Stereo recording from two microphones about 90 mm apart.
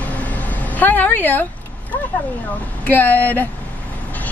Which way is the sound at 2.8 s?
20° left (ahead or behind).